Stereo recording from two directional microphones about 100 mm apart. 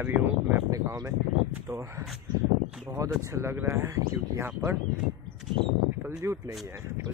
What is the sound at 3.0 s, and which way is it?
Speech, 30° right (ahead or behind).